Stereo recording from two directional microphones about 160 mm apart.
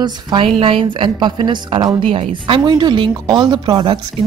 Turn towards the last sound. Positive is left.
turn(degrees=-25)  # may be behind; listen again after turning